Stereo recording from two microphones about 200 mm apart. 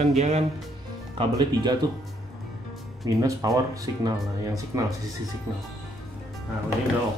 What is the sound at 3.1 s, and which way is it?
Speech, 15° right (ahead or behind).